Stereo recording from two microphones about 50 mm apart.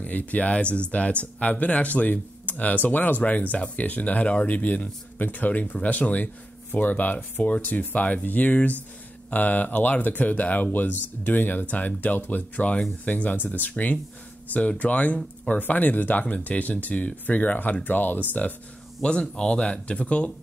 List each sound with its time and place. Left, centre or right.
0.0 s speech: left
15.6 s speech: left
19.0 s speech: centre